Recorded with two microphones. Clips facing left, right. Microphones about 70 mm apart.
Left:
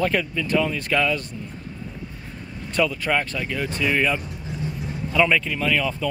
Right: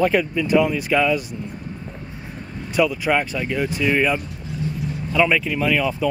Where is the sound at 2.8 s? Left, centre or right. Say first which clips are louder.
Right 3 dB; centre.